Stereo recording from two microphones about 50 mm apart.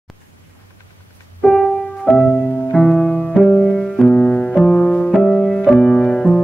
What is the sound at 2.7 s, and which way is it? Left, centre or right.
Music, centre.